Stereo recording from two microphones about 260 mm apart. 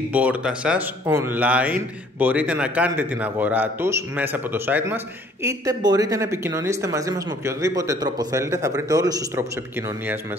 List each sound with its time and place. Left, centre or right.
0.1 s speech: centre